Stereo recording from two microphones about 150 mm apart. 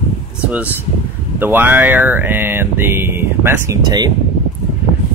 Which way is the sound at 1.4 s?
15° right (ahead or behind).